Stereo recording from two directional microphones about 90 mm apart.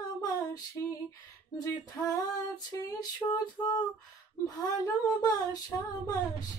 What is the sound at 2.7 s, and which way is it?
Speech, 35° left (ahead or behind).